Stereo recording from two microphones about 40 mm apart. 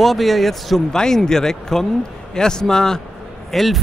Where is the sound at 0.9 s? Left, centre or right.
Centre.